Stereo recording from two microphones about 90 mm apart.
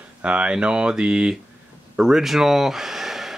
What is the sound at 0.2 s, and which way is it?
Speech, 15° right (ahead or behind).